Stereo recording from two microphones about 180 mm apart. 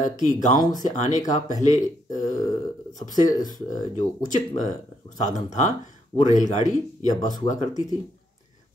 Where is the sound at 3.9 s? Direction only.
45° left (ahead or behind).